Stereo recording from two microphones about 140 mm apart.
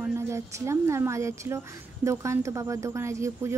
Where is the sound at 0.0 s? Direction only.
20° right (ahead or behind).